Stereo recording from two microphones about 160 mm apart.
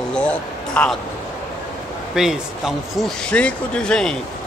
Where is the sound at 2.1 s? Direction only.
5° right (ahead or behind).